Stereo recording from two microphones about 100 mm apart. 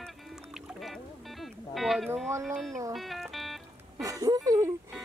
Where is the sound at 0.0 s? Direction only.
Centre (ahead or behind).